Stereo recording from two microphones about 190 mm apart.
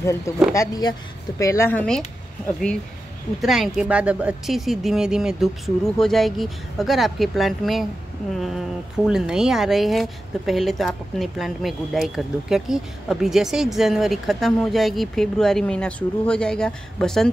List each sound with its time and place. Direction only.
0.6 s speech: 20° left (ahead or behind); by 17.3 s 5° left (ahead or behind)